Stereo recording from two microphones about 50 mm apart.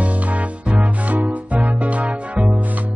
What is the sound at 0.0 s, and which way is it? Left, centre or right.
Music, right.